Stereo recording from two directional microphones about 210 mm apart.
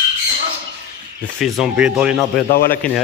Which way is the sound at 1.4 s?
5° right (ahead or behind).